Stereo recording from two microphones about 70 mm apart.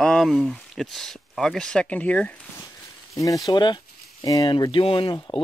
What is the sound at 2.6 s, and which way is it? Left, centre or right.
Walk, left.